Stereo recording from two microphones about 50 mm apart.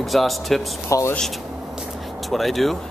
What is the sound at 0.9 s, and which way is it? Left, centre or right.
Speech, left.